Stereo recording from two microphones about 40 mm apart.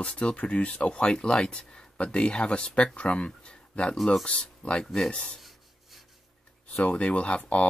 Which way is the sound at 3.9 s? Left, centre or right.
Centre.